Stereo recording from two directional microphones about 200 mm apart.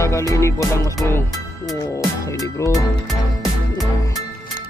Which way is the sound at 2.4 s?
15° left (ahead or behind).